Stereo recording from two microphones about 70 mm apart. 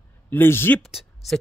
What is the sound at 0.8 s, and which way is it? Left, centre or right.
Speech, centre.